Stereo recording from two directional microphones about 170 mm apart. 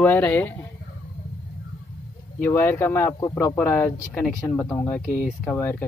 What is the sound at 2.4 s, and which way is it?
Speech, 15° left (ahead or behind).